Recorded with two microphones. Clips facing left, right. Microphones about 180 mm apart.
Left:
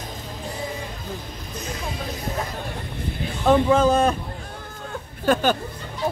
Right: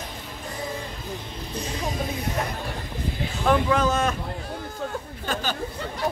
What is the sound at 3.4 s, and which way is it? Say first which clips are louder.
Speech: left 5 dB; 25° left (ahead or behind).